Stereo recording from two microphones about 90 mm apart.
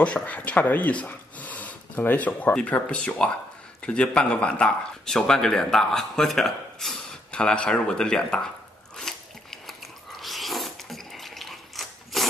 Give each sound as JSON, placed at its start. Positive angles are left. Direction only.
{"t": 0.0, "sound": "speech", "side_deg": 15}
{"t": 8.9, "sound": "biting", "side_deg": 5}